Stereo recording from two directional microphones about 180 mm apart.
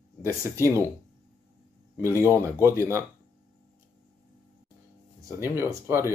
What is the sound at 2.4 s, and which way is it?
Speech, 15° right (ahead or behind).